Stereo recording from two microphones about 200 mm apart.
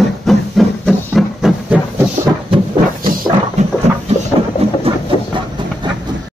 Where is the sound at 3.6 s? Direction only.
35° right (ahead or behind).